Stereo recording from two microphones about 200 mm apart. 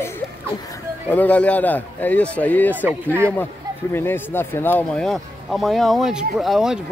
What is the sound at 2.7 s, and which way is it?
Speech, 10° right (ahead or behind).